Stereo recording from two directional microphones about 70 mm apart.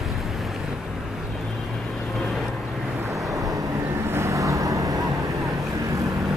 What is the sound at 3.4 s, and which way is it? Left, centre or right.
Vehicle, right.